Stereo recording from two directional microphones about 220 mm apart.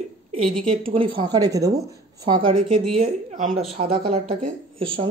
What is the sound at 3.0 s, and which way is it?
Speech, 35° right (ahead or behind).